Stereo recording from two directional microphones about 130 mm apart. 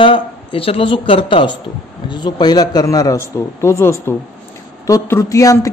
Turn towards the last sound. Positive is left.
turn(degrees=25)  # may be behind; listen again after turning